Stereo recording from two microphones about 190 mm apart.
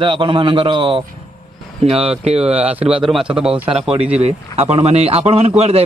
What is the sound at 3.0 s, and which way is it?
A man's voice, centre (ahead or behind).